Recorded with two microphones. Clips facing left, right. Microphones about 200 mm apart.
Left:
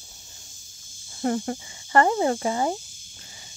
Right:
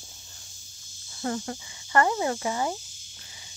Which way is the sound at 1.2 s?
30° left (ahead or behind).